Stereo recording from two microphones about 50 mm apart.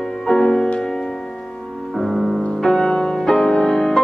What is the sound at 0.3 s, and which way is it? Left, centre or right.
Music, centre.